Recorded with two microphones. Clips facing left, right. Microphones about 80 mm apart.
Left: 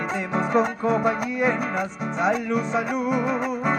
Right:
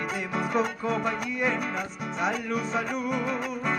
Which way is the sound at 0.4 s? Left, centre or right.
Left.